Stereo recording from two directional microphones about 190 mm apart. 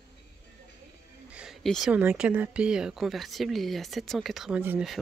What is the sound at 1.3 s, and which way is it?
Speech, centre (ahead or behind).